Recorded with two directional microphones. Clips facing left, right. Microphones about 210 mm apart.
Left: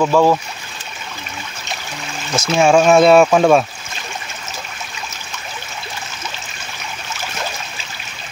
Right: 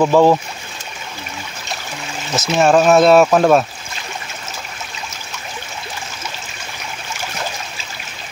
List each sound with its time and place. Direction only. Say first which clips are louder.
0.0 s speech: right 2 dB; 15° right (ahead or behind)
2.5 s speech: even; centre (ahead or behind)